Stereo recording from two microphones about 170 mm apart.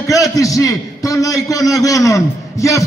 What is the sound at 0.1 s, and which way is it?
A man's voice, 20° left (ahead or behind).